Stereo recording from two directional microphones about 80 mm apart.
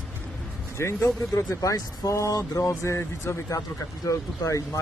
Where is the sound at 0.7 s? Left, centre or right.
Left.